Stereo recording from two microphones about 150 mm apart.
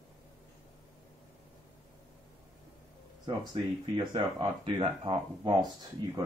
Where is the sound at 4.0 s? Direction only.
30° right (ahead or behind).